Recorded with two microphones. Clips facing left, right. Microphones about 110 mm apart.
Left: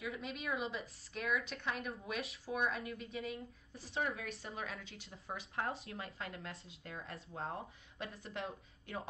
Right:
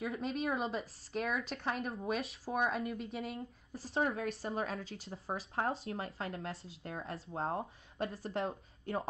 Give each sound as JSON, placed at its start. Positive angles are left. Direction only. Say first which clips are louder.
{"t": 0.0, "sound": "speech", "louder": "right 7 dB", "side_deg": -30}